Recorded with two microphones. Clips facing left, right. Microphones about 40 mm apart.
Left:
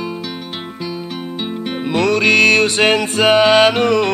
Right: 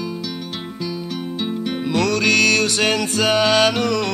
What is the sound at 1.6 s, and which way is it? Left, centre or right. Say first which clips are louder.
Music: left 4 dB; left.